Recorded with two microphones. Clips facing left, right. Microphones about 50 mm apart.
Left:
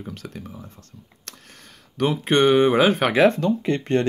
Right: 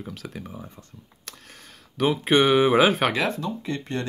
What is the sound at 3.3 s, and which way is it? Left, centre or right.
Speech, left.